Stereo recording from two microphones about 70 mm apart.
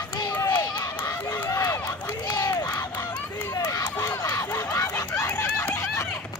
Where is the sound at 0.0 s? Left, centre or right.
Left.